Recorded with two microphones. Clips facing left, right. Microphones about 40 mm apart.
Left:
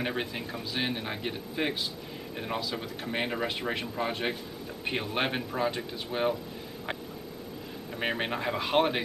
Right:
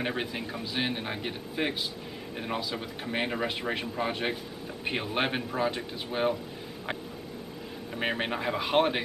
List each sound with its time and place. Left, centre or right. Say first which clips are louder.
0.0 s speech: even; centre
7.9 s speech: right 1 dB; centre